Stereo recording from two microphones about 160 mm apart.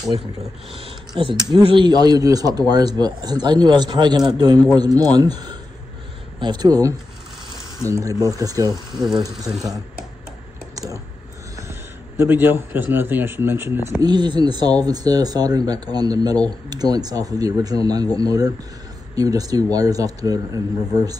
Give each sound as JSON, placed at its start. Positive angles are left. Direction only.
{"t": 1.4, "sound": "a man's voice", "side_deg": -30}
{"t": 6.4, "sound": "a man's voice", "side_deg": -25}
{"t": 8.9, "sound": "speech", "side_deg": 0}
{"t": 12.2, "sound": "a man's voice", "side_deg": -10}
{"t": 13.9, "sound": "a man's voice", "side_deg": -25}